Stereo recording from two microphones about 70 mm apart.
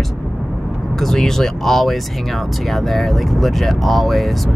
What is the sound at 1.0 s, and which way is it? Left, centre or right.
Speech, centre.